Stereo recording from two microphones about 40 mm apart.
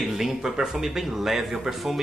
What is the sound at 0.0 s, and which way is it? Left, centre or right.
Speech, centre.